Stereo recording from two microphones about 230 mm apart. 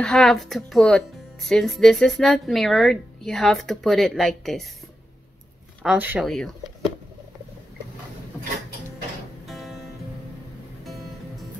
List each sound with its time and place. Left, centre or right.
0.0 s a woman's voice: centre
5.8 s a woman's voice: centre
9.5 s music: centre